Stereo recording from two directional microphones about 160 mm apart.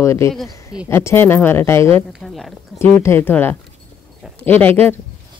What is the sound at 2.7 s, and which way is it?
Speech, 15° left (ahead or behind).